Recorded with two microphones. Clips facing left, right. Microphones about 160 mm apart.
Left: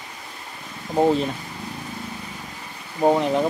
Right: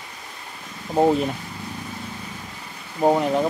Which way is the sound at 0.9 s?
10° right (ahead or behind).